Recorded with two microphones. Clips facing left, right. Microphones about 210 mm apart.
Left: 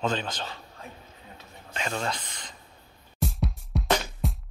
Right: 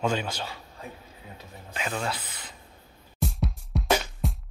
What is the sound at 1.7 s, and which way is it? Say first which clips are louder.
Speech: even; 5° right (ahead or behind).